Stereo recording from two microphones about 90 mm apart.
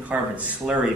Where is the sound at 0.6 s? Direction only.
5° right (ahead or behind).